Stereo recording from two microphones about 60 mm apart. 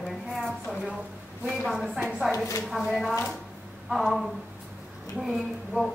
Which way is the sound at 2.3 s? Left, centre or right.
Left.